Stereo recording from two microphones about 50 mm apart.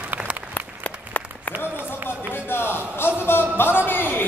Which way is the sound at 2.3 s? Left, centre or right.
Left.